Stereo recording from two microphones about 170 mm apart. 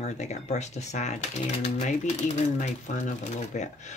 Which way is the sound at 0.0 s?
40° left (ahead or behind).